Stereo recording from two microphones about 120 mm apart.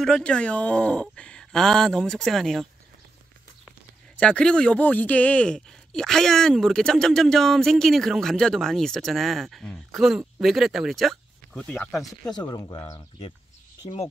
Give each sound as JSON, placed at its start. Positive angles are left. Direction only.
{"t": 0.0, "sound": "speech", "side_deg": 5}
{"t": 4.2, "sound": "speech", "side_deg": 10}
{"t": 11.5, "sound": "speech", "side_deg": 10}
{"t": 12.4, "sound": "speech", "side_deg": 35}